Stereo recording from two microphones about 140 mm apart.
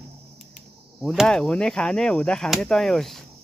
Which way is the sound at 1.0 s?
5° left (ahead or behind).